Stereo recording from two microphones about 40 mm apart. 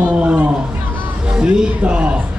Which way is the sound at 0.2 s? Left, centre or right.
Right.